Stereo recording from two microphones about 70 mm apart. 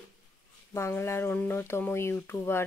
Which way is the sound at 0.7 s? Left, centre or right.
Left.